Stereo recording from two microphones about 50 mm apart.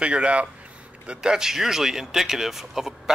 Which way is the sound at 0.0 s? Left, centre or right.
Right.